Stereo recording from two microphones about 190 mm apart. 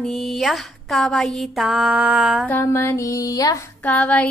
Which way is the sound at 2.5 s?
10° left (ahead or behind).